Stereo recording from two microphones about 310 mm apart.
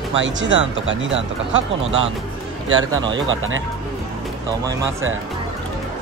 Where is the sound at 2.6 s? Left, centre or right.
Right.